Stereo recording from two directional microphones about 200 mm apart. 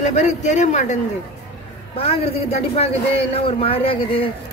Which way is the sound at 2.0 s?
30° left (ahead or behind).